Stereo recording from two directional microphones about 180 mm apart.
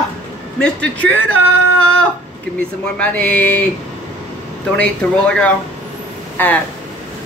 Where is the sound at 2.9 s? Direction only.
5° left (ahead or behind).